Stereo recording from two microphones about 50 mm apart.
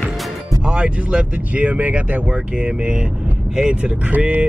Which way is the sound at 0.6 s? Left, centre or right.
Right.